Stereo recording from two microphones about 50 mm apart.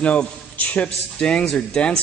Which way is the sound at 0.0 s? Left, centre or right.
Left.